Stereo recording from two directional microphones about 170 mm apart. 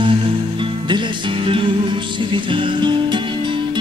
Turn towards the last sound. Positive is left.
turn(degrees=-30)  # may be behind; listen again after turning